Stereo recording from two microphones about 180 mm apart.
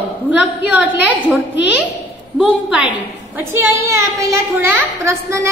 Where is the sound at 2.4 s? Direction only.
5° right (ahead or behind).